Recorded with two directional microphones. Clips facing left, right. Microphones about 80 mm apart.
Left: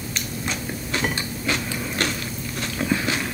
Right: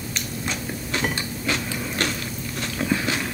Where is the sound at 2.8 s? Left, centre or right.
Left.